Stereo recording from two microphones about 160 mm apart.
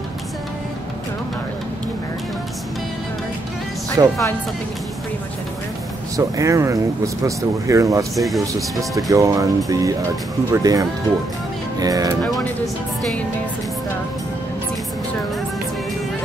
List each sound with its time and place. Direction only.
4.0 s speech: 20° right (ahead or behind)
6.1 s speech: 20° right (ahead or behind)
8.2 s speech: centre (ahead or behind)
9.1 s speech: 20° right (ahead or behind)
12.2 s speech: centre (ahead or behind)